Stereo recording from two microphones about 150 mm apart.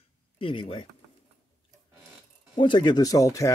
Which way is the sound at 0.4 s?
35° left (ahead or behind).